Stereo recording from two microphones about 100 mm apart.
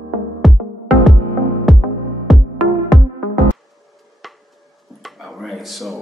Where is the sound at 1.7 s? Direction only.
Centre (ahead or behind).